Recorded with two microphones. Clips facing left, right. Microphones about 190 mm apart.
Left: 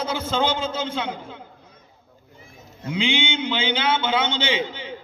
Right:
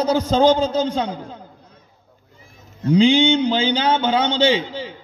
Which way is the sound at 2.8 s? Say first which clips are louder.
Right 10 dB; 40° right (ahead or behind).